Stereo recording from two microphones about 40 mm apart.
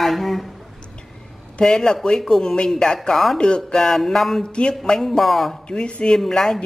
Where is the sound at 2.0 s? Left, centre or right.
Centre.